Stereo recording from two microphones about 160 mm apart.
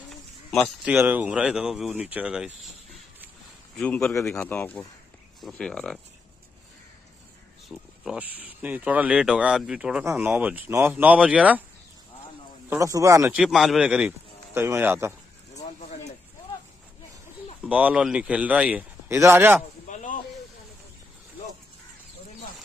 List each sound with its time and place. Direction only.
0.8 s speech: 10° right (ahead or behind)
3.7 s speech: 5° left (ahead or behind)
7.6 s speech: centre (ahead or behind)
12.6 s speech: 20° right (ahead or behind)
13.3 s speech: 5° right (ahead or behind)
17.6 s speech: 10° right (ahead or behind)
19.9 s a sound: 50° left (ahead or behind)